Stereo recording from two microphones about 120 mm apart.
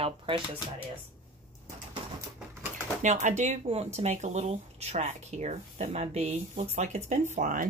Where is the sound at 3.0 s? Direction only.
80° right.